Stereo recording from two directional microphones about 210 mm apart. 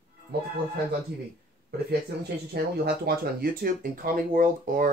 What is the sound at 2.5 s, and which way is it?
Speech, 50° right (ahead or behind).